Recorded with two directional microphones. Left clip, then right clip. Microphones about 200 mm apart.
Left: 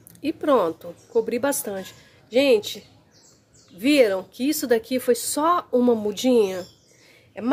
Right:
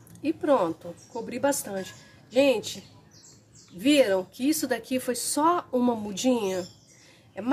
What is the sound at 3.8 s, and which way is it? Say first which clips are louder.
Speech: left 3 dB; 25° left (ahead or behind).